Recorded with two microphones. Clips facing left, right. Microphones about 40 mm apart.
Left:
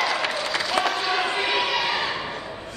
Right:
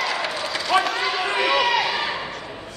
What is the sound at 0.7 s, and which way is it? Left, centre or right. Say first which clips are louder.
Basketball bounce: right 4 dB; right.